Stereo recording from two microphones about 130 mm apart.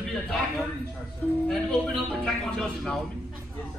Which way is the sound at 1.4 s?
Centre (ahead or behind).